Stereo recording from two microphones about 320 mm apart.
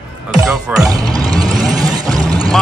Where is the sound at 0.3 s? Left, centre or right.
Centre.